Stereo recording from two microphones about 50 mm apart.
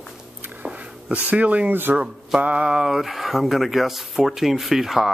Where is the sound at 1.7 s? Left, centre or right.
Right.